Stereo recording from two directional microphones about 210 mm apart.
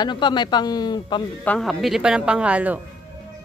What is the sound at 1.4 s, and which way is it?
Speech, 5° left (ahead or behind).